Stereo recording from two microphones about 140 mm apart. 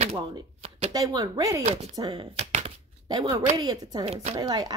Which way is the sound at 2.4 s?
55° right (ahead or behind).